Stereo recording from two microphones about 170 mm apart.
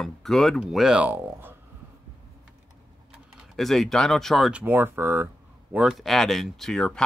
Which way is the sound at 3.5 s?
Centre (ahead or behind).